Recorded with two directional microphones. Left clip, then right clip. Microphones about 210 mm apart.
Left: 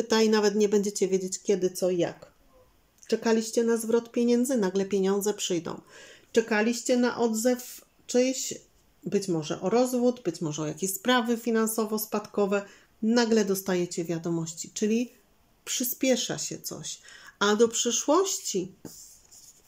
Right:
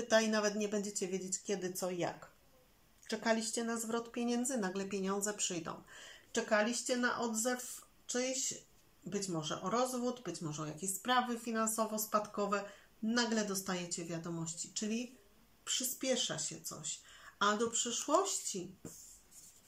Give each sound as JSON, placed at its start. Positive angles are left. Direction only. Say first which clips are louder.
{"t": 0.1, "sound": "speech", "louder": "left 8 dB", "side_deg": 40}